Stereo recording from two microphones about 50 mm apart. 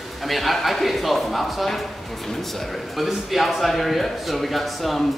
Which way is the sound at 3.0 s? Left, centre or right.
Centre.